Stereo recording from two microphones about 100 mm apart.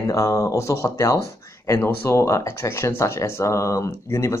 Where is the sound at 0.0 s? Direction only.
30° left (ahead or behind).